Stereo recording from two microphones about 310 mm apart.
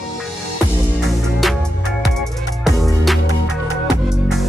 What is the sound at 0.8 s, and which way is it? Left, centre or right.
Music, centre.